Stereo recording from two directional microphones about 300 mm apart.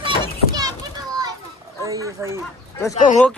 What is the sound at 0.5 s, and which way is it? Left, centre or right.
Children playing, centre.